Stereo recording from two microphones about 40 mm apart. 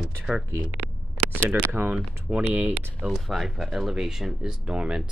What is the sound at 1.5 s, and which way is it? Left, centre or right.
Speech, right.